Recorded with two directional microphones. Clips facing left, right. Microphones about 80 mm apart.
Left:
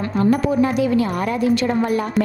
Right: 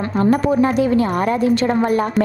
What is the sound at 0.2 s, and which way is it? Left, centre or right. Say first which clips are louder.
A woman's voice: right 2 dB; right.